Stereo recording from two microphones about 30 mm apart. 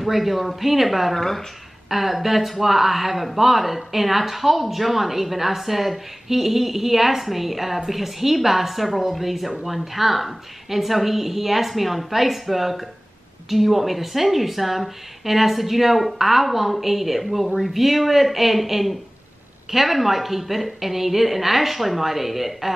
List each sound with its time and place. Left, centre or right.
0.0 s speech: centre
1.1 s speech: centre
1.9 s a woman's voice: centre